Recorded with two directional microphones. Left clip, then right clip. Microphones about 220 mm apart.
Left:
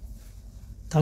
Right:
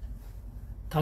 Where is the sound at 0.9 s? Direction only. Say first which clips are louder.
Left 4 dB; 45° left (ahead or behind).